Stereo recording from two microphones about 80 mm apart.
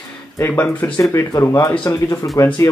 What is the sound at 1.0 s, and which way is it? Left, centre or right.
Speech, left.